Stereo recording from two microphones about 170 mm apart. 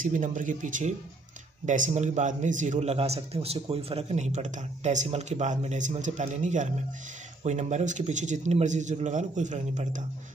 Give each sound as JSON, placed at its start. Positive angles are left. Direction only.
{"t": 0.0, "sound": "speech", "side_deg": -50}